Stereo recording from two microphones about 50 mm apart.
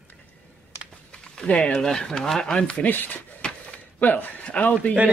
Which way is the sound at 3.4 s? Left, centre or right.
Centre.